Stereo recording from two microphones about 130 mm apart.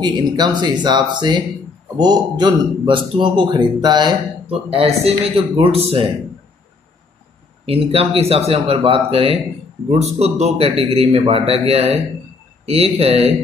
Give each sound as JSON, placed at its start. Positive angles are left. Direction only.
{"t": 0.0, "sound": "speech", "side_deg": -35}
{"t": 4.5, "sound": "speech", "side_deg": -45}
{"t": 7.6, "sound": "a man's voice", "side_deg": -50}